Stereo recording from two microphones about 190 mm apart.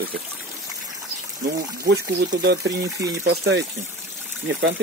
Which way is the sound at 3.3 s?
70° right (ahead or behind).